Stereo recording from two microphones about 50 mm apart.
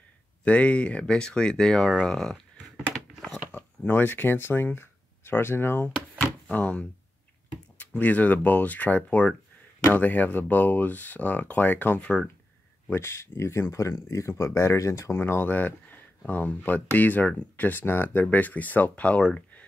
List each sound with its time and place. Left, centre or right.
0.4 s speech: left
2.0 s a sound: centre
3.5 s speech: left
4.7 s a sound: left
6.1 s a sound: left
7.8 s speech: left
12.0 s speech: left
12.9 s speech: left
15.1 s speech: left
15.4 s speech: left